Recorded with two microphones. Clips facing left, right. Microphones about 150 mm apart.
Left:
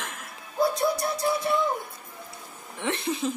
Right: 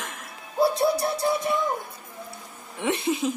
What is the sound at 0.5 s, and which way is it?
Speech, 30° right (ahead or behind).